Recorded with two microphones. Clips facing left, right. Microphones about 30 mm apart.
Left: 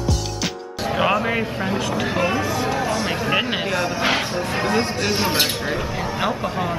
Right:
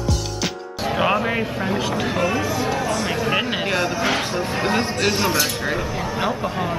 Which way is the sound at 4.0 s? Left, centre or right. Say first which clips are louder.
Left 1 dB; centre.